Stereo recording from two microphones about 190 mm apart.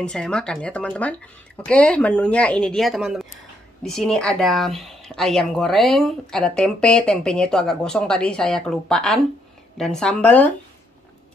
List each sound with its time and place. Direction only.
0.0 s speech: 5° left (ahead or behind)